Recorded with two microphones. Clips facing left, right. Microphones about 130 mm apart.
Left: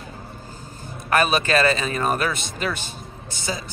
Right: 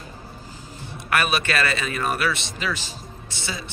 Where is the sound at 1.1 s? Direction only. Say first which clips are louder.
Left 4 dB; 35° left (ahead or behind).